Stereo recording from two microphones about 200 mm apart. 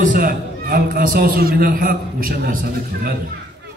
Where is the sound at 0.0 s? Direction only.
45° right (ahead or behind).